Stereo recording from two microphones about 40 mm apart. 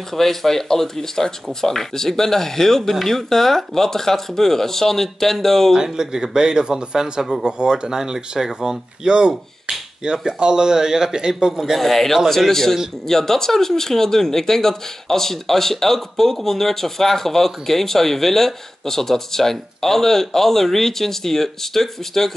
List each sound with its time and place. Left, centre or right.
0.1 s speech: centre
5.8 s finger snapping: centre
9.0 s finger snapping: centre
11.8 s speech: centre